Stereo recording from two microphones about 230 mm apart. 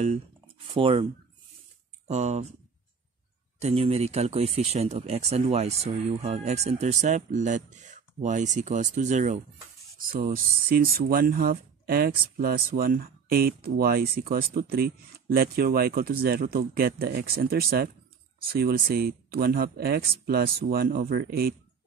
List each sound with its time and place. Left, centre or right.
0.7 s speech: right
2.0 s speech: right
3.5 s speech: right